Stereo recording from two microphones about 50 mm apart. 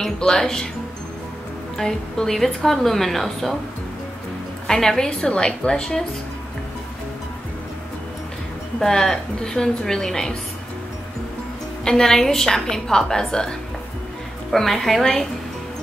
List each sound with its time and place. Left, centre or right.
0.0 s a woman's voice: centre
1.8 s a woman's voice: centre
4.6 s a woman's voice: centre
5.2 s a woman's voice: left
8.7 s a woman's voice: centre
11.8 s a woman's voice: centre